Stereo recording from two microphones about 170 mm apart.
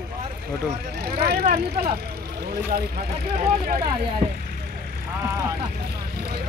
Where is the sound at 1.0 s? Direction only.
65° right (ahead or behind).